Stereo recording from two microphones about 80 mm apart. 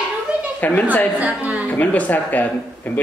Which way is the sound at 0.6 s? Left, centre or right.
Left.